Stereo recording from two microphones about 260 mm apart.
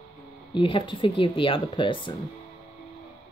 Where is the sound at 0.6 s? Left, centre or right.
Centre.